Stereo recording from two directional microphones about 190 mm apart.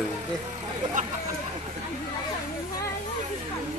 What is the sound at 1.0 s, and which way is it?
Speech, 40° right (ahead or behind).